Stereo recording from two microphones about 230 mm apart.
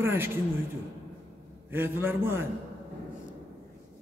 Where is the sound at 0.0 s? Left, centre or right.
Centre.